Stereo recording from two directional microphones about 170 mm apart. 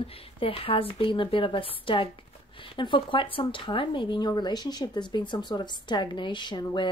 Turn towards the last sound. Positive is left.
turn(degrees=25)  # may be behind; listen again after turning